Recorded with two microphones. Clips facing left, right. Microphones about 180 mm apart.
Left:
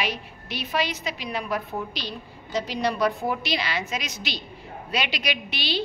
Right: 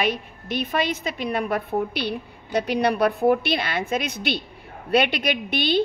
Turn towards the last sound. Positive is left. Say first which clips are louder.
# right 7 dB
turn(degrees=-50)  # may be behind; listen again after turning